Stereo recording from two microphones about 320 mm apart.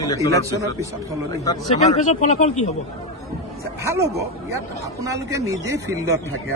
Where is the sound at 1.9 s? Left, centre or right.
Left.